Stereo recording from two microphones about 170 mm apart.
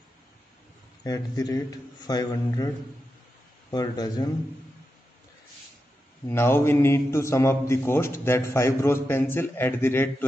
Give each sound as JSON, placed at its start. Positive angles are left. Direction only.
{"t": 1.0, "sound": "a man's voice", "side_deg": 20}
{"t": 3.7, "sound": "a man's voice", "side_deg": 20}
{"t": 6.2, "sound": "a man's voice", "side_deg": 15}